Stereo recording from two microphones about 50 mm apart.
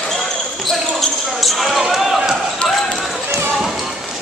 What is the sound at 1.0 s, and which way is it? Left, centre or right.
Basketball bounce, centre.